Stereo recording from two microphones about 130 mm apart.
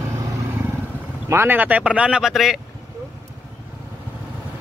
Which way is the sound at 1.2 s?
20° right (ahead or behind).